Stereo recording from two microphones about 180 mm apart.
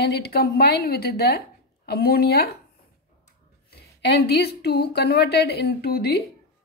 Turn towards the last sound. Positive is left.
turn(degrees=60)  # may be behind; listen again after turning